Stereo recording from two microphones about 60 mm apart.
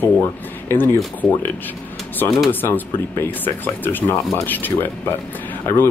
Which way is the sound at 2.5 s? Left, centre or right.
Left.